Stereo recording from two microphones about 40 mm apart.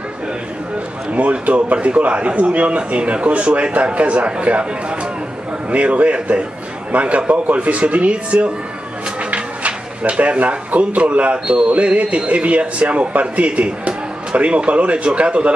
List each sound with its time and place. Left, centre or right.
1.1 s a man's voice: right